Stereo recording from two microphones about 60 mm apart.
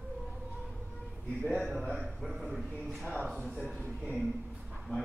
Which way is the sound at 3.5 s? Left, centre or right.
Centre.